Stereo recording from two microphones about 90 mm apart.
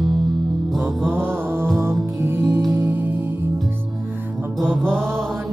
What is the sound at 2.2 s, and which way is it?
Music, 25° right (ahead or behind).